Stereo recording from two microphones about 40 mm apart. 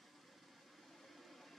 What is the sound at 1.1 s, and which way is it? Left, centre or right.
Vehicle, centre.